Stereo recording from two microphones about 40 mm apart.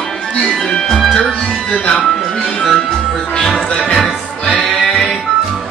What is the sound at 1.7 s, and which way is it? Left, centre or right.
Music, left.